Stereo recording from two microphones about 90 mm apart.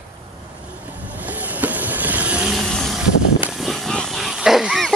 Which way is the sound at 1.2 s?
20° right (ahead or behind).